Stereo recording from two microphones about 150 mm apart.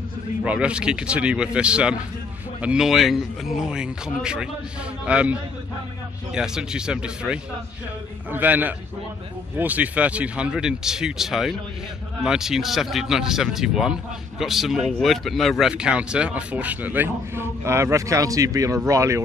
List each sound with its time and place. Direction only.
0.4 s speech: 5° right (ahead or behind)